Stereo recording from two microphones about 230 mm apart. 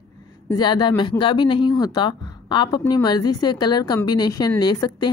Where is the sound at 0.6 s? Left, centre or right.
Centre.